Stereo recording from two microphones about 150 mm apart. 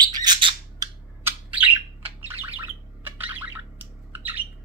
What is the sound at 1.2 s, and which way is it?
Bird, 10° right (ahead or behind).